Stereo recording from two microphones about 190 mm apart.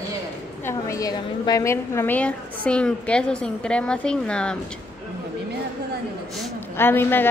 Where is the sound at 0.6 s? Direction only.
15° left (ahead or behind).